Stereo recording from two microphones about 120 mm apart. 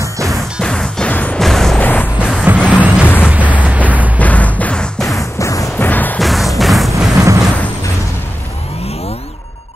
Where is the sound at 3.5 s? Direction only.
10° right (ahead or behind).